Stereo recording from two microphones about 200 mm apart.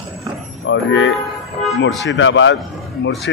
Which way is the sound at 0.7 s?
65° left (ahead or behind).